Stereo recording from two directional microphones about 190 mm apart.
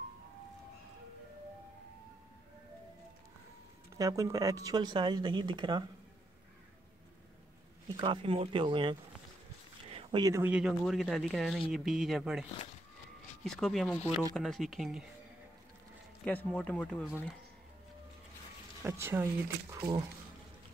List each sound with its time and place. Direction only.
3.9 s speech: 15° right (ahead or behind)
7.9 s speech: 25° right (ahead or behind)
9.8 s a sound: 30° right (ahead or behind)
10.2 s speech: 15° right (ahead or behind)
16.3 s speech: 10° left (ahead or behind)
18.8 s speech: 10° right (ahead or behind)